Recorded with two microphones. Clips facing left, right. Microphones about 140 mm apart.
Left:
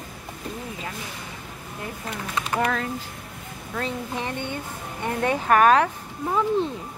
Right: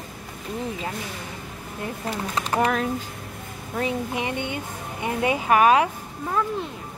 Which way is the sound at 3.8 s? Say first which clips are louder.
Right 3 dB; 15° right (ahead or behind).